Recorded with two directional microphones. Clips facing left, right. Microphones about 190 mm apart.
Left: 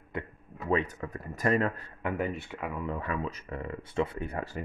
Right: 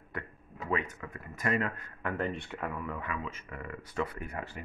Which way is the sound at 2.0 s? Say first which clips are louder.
Left 2 dB; 10° left (ahead or behind).